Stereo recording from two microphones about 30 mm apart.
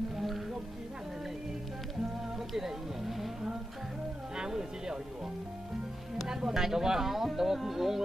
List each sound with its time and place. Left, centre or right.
2.3 s music: centre
4.4 s music: right
6.2 s speech: centre